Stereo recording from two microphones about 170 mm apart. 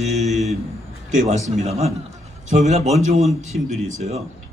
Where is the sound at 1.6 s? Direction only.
40° right (ahead or behind).